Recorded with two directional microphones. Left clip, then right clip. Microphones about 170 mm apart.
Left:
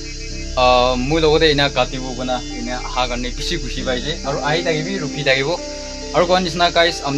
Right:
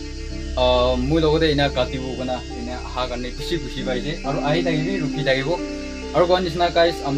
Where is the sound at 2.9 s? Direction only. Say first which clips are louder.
Left 5 dB; 20° left (ahead or behind).